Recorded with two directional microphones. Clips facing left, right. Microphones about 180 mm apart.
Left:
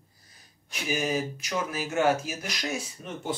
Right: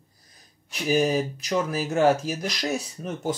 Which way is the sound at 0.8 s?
40° right (ahead or behind).